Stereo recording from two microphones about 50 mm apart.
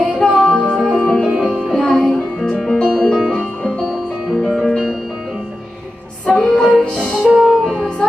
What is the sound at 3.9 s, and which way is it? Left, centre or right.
Music, centre.